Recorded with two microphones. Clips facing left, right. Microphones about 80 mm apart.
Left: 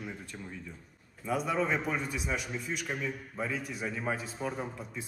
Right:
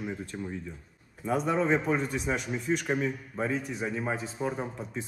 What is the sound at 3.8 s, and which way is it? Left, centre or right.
Speech, centre.